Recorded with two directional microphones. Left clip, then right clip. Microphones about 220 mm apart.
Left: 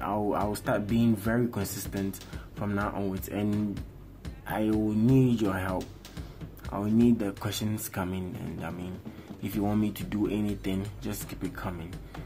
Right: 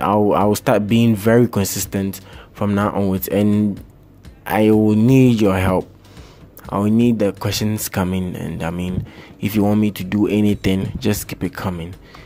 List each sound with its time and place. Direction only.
0.0 s speech: 35° right (ahead or behind)
4.5 s speech: 35° right (ahead or behind)